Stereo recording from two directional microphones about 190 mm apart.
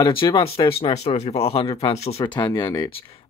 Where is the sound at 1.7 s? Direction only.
20° left (ahead or behind).